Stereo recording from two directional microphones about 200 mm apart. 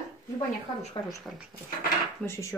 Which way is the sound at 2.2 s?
15° left (ahead or behind).